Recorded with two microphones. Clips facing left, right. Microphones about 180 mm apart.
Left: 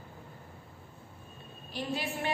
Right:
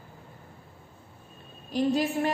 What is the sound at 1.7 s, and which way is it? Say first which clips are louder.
Speech: right 10 dB; 40° right (ahead or behind).